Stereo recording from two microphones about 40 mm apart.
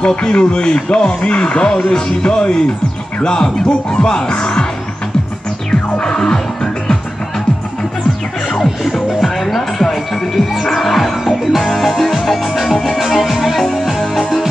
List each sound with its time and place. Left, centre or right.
0.0 s speech: left
5.7 s music: left
9.1 s music: centre